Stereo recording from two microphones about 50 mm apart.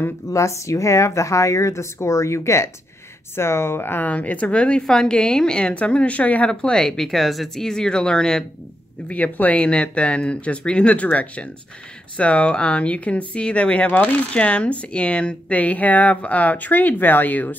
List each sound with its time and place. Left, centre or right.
0.3 s speech: left
3.3 s speech: left
4.1 s a woman's voice: left
6.5 s speech: centre
9.0 s a woman's voice: left
14.3 s a woman's voice: left